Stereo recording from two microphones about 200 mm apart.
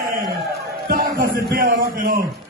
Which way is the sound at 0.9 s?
50° right (ahead or behind).